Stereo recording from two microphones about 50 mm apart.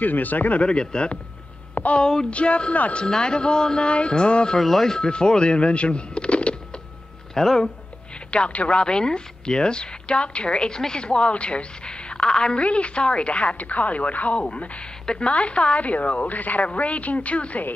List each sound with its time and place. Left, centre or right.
0.0 s speech: left
0.6 s speech: centre
4.6 s speech: centre
7.3 s speech: centre
8.3 s speech: left